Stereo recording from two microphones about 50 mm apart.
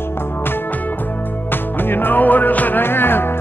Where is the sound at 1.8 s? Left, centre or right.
Left.